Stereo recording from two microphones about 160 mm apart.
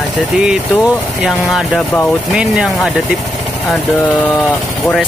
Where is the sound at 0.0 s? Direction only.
10° left (ahead or behind).